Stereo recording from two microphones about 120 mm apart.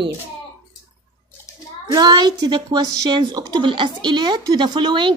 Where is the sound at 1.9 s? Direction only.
35° right (ahead or behind).